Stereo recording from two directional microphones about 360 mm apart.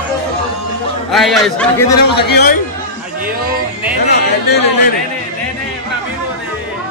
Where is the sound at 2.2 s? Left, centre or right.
Left.